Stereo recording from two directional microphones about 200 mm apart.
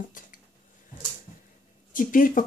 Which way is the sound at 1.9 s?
45° left (ahead or behind).